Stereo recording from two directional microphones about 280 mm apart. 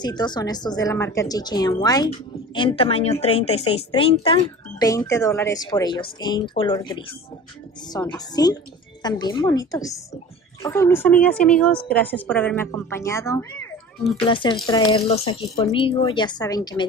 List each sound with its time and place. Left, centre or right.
0.0 s a woman's voice: centre